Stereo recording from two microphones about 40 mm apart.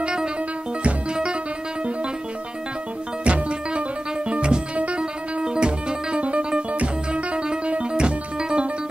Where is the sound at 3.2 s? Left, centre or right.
Right.